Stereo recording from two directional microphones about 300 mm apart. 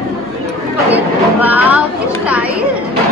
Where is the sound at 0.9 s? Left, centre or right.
Centre.